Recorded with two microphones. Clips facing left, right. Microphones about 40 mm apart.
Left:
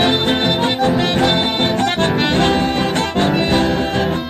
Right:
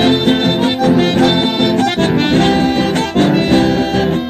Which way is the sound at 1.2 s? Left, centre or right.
Left.